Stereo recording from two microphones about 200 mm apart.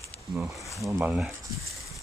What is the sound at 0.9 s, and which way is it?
Speech, 10° right (ahead or behind).